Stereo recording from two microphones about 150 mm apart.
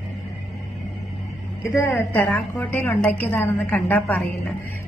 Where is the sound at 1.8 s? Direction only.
15° left (ahead or behind).